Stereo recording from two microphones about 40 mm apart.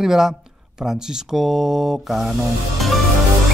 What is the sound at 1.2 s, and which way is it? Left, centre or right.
Music, centre.